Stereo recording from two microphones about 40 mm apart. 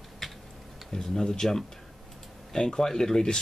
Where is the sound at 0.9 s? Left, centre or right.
Centre.